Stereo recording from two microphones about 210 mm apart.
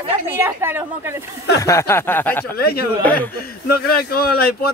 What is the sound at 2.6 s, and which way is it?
Speech, 45° left (ahead or behind).